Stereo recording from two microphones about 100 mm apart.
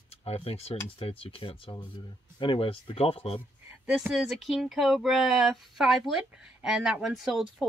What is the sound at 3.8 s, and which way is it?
Speech, 10° right (ahead or behind).